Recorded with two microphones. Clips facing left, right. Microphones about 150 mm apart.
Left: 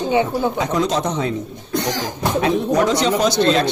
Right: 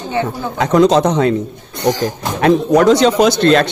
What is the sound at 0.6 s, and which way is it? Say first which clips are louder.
Speech: right 8 dB; 85° right.